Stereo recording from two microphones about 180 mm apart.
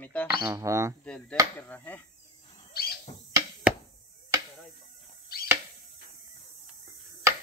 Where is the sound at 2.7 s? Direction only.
60° left (ahead or behind).